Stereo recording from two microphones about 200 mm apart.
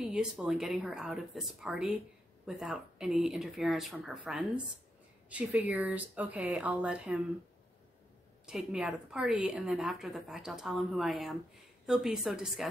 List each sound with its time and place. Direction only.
0.0 s a woman's voice: centre (ahead or behind)
8.5 s a woman's voice: 5° right (ahead or behind)